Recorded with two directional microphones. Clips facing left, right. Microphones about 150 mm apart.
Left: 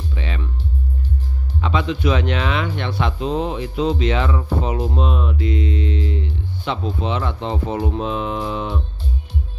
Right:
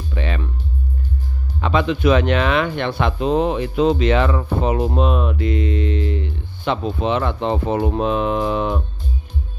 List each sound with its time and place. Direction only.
0.1 s music: 55° right (ahead or behind)
1.6 s speech: 55° right (ahead or behind)